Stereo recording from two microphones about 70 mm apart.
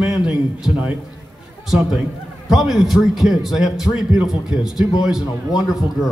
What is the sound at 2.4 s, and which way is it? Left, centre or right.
A man's voice, centre.